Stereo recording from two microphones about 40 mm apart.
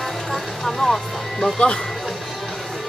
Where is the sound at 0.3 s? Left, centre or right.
Centre.